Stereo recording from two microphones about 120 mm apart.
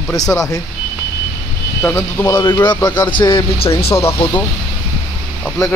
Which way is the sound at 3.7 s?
20° left (ahead or behind).